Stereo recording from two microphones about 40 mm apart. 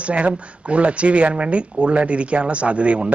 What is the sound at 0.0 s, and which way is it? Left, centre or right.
A man's voice, right.